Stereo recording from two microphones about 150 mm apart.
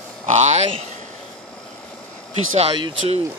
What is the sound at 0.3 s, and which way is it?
Speech, 50° right (ahead or behind).